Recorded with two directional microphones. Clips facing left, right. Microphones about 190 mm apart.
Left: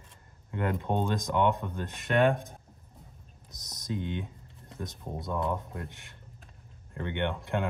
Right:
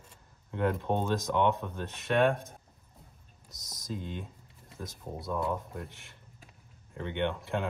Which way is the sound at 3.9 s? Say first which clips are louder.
Left 5 dB; 70° left (ahead or behind).